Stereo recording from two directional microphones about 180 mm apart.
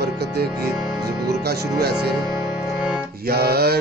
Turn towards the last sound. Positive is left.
turn(degrees=-60)  # may be behind; listen again after turning